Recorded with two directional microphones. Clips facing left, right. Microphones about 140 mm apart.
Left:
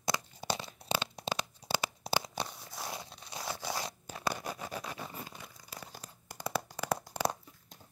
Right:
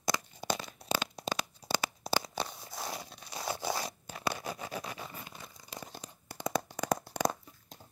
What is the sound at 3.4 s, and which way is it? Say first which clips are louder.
Zipper: right 4 dB; 20° right (ahead or behind).